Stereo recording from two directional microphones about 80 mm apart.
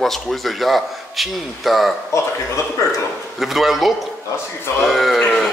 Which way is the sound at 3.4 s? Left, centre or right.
Centre.